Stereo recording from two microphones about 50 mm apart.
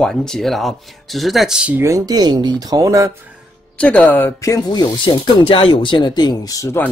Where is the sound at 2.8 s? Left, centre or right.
Right.